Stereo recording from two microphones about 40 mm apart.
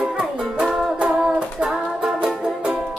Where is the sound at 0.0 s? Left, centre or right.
Right.